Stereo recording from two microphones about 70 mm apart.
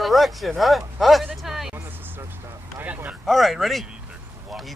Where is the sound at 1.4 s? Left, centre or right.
Centre.